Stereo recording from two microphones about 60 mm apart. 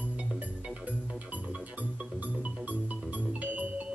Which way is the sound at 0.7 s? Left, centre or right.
Right.